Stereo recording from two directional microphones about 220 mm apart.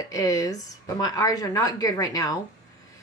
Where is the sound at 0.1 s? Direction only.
15° left (ahead or behind).